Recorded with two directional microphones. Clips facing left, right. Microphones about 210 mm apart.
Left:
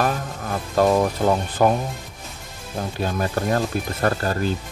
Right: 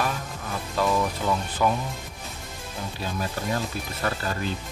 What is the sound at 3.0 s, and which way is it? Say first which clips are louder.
Speech: left 6 dB; 55° left (ahead or behind).